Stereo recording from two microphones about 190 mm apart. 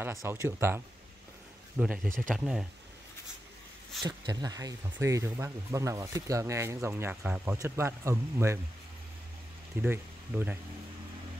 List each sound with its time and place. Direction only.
0.0 s speech: 15° right (ahead or behind)
4.0 s speech: 20° right (ahead or behind)
9.8 s speech: 10° right (ahead or behind)